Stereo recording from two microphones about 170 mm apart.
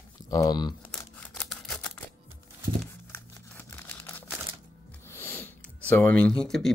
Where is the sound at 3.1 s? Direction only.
10° left (ahead or behind).